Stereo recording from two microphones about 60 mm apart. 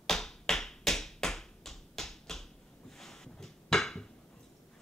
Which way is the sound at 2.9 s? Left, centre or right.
Centre.